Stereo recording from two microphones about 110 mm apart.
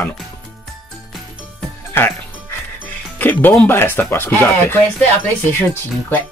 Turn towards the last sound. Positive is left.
turn(degrees=20)  # may be behind; listen again after turning